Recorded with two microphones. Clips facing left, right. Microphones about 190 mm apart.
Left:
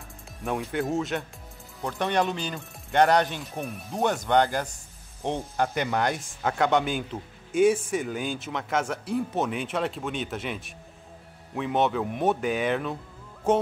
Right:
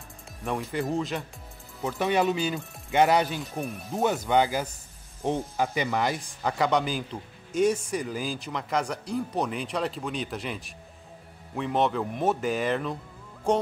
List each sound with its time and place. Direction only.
0.5 s speech: centre (ahead or behind)